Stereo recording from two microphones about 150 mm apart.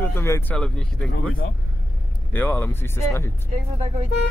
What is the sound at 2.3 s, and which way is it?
Speech, 10° left (ahead or behind).